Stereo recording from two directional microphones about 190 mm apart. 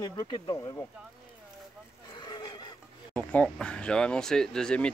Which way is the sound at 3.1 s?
5° left (ahead or behind).